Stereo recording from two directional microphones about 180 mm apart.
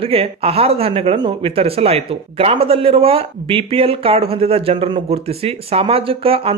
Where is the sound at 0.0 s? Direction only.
30° right (ahead or behind).